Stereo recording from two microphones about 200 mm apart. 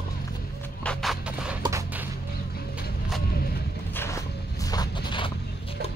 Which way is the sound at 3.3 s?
50° left (ahead or behind).